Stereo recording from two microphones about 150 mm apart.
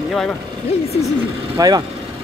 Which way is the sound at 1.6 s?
25° right (ahead or behind).